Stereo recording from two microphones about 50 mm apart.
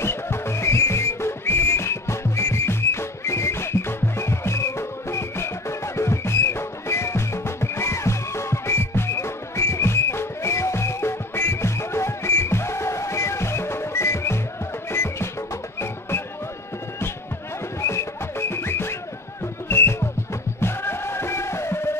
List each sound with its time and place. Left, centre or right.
0.0 s whistle: left
14.9 s music: left
17.8 s music: left